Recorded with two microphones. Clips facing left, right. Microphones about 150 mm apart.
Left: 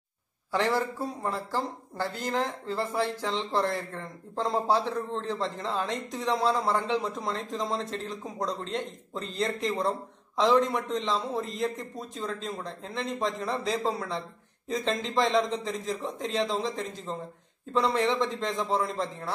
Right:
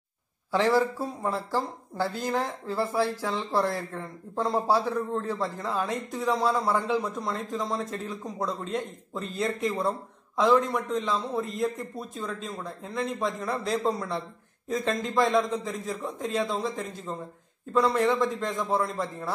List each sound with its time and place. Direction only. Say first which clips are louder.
0.5 s a man's voice: right 4 dB; 15° right (ahead or behind)